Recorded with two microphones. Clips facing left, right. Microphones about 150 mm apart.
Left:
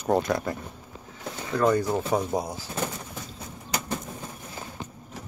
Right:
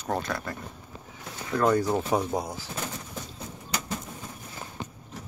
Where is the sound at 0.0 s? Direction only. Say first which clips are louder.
Left 6 dB; 15° left (ahead or behind).